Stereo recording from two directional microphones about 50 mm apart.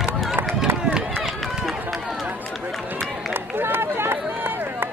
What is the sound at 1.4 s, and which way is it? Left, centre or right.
Run, centre.